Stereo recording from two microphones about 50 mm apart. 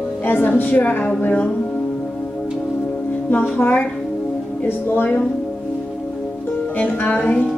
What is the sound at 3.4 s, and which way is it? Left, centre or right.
A woman's voice, left.